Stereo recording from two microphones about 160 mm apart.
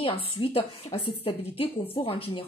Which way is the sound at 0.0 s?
35° left (ahead or behind).